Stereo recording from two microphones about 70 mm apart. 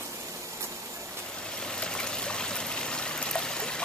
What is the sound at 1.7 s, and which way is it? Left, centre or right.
Stream, centre.